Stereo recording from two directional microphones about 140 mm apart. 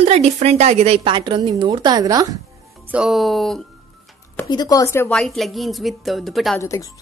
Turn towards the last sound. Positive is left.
turn(degrees=0)  # may be behind; listen again after turning